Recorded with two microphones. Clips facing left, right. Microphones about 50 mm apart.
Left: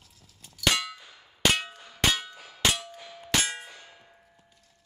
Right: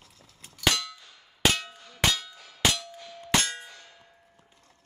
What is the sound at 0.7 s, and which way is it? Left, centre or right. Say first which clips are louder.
Clang: left 3 dB; centre.